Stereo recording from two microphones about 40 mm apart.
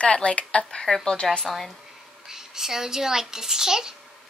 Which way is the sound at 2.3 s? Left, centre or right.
Centre.